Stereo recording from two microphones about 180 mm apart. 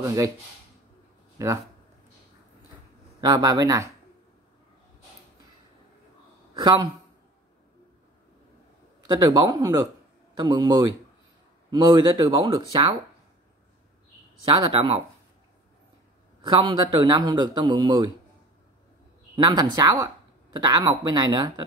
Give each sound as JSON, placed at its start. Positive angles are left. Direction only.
{"t": 0.0, "sound": "a man's voice", "side_deg": -20}
{"t": 3.2, "sound": "a man's voice", "side_deg": -20}
{"t": 6.5, "sound": "a man's voice", "side_deg": -25}
{"t": 9.0, "sound": "a man's voice", "side_deg": -20}
{"t": 14.4, "sound": "a man's voice", "side_deg": -30}
{"t": 16.4, "sound": "a man's voice", "side_deg": -25}
{"t": 19.3, "sound": "a man's voice", "side_deg": -25}